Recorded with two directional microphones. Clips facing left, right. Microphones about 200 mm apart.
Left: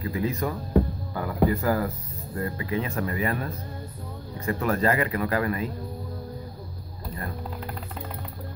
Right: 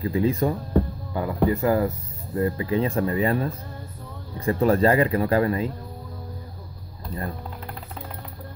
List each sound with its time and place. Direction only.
0.0 s speech: 30° right (ahead or behind)